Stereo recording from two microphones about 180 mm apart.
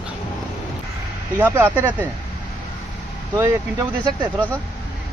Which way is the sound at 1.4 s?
15° right (ahead or behind).